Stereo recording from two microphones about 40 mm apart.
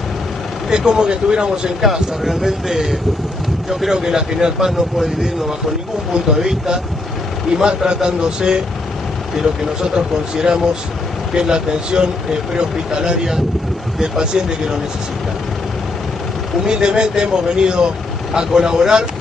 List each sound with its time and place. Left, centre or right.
0.7 s speech: centre
1.8 s a man's voice: centre
4.9 s speech: centre
6.1 s a man's voice: centre
16.6 s speech: right